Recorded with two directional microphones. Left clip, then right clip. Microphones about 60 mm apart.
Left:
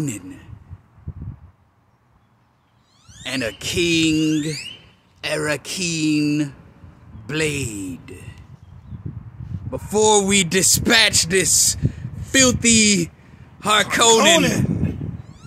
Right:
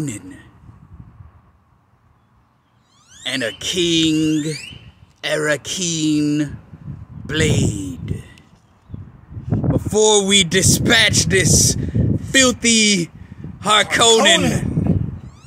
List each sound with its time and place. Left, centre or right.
0.0 s a man's voice: left
3.3 s speech: centre
9.7 s speech: centre